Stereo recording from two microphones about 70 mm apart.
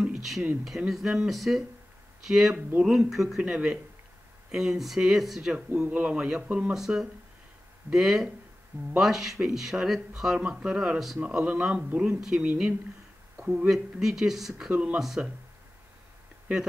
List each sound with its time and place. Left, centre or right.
0.0 s a sound: centre
0.7 s speech: centre
14.7 s speech: right
15.0 s speech: centre